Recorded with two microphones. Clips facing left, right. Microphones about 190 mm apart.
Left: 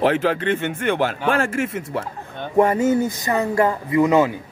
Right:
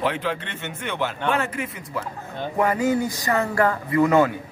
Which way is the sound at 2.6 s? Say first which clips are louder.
Left 5 dB; 25° left (ahead or behind).